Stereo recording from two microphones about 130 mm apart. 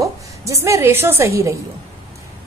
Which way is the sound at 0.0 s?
25° right (ahead or behind).